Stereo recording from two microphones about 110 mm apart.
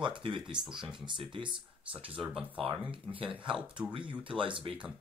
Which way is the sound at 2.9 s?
55° right (ahead or behind).